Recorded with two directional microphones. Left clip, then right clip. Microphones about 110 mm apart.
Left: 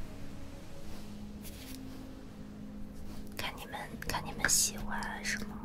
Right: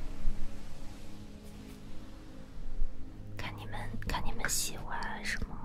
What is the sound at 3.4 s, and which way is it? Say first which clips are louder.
Whispering: left 3 dB; 35° right (ahead or behind).